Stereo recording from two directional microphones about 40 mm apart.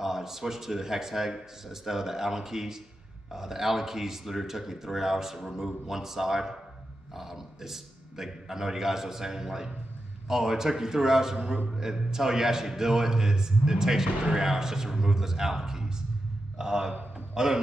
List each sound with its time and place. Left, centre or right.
0.0 s a man's voice: centre
17.3 s music: centre